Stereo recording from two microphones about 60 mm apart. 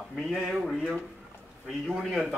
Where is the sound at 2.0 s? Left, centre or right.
Centre.